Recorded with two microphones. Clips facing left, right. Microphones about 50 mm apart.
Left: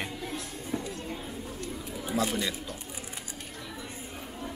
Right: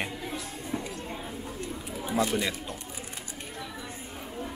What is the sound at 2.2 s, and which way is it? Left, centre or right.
Speech, right.